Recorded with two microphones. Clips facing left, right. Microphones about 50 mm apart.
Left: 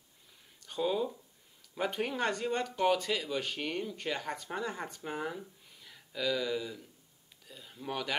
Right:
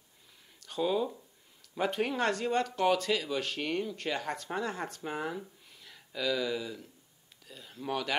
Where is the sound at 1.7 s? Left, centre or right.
Centre.